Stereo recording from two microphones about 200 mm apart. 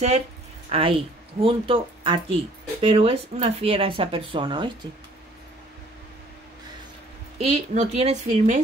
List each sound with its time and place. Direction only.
0.7 s a woman's voice: 30° right (ahead or behind)
7.3 s a woman's voice: 30° right (ahead or behind)